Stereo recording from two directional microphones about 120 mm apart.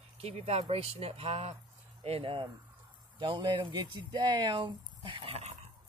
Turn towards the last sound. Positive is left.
turn(degrees=-45)  # may be behind; listen again after turning